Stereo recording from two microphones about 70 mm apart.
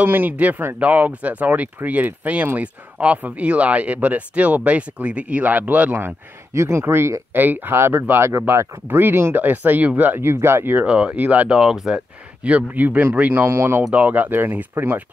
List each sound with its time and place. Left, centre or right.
0.0 s speech: right
5.9 s speech: right
8.8 s speech: right
10.9 s speech: centre
11.5 s speech: centre
12.4 s speech: right
13.5 s speech: right
13.8 s speech: right